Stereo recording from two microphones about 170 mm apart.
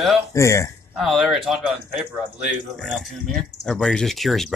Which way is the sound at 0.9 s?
Centre (ahead or behind).